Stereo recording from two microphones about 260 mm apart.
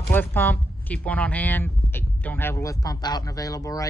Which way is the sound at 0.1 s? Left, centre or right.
Centre.